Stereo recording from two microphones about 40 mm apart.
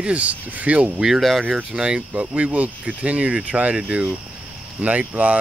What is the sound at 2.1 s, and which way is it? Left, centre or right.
Speech, right.